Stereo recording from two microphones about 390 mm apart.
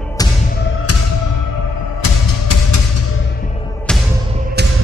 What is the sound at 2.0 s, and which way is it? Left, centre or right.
Music, left.